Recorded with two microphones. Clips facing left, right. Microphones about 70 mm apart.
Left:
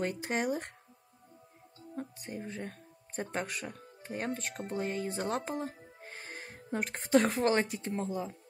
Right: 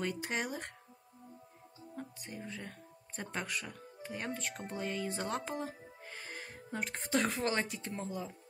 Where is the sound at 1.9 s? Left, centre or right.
Left.